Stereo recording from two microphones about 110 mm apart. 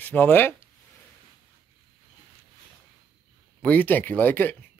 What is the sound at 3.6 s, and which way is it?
Speech, 15° left (ahead or behind).